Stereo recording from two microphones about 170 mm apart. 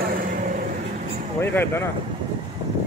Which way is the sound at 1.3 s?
15° left (ahead or behind).